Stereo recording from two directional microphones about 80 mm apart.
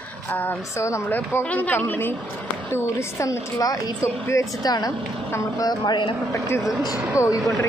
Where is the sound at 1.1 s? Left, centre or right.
Left.